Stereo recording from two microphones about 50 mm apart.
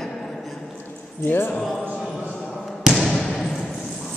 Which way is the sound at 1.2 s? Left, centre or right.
Left.